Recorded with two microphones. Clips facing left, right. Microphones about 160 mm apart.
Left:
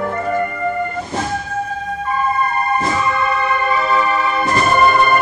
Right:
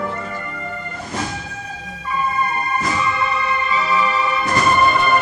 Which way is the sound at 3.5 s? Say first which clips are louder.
Left 3 dB; 55° left (ahead or behind).